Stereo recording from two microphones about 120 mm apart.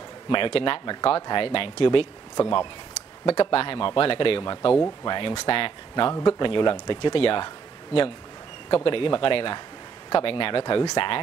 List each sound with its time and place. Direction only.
0.3 s speech: 45° left (ahead or behind)
3.3 s speech: 50° left (ahead or behind)